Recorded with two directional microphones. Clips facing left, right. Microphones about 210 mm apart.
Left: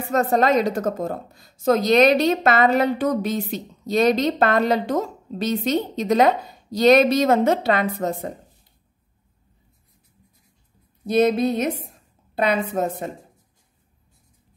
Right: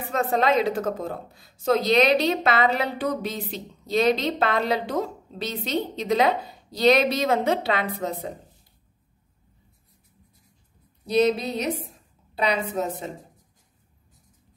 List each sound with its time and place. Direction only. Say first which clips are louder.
0.1 s a woman's voice: left 4 dB; 45° left (ahead or behind)
11.1 s a woman's voice: left 3 dB; 50° left (ahead or behind)
12.8 s a woman's voice: left 4 dB; 50° left (ahead or behind)